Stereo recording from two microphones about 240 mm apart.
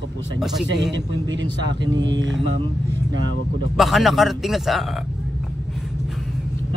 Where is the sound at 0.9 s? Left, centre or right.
Right.